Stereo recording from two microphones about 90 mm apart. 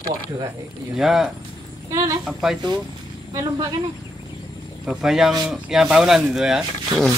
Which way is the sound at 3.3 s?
45° right (ahead or behind).